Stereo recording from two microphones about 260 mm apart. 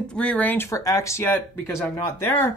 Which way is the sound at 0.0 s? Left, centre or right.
Centre.